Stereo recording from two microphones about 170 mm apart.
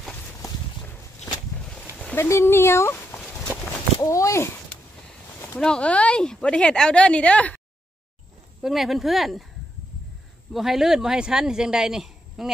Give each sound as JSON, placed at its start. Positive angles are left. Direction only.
{"t": 0.4, "sound": "walk", "side_deg": 20}
{"t": 2.0, "sound": "a sound", "side_deg": 10}
{"t": 4.0, "sound": "a woman's voice", "side_deg": 20}
{"t": 5.5, "sound": "a woman's voice", "side_deg": 5}
{"t": 8.6, "sound": "speech", "side_deg": 0}
{"t": 10.5, "sound": "speech", "side_deg": 0}